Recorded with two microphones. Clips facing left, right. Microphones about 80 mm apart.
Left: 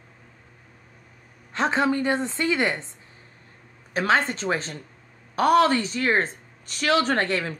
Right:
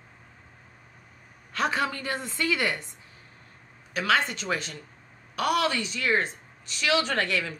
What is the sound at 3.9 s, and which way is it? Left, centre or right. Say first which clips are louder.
Speech: left 3 dB; left.